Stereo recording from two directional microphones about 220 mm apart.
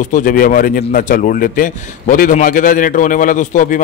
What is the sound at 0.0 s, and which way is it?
A man's voice, 35° left (ahead or behind).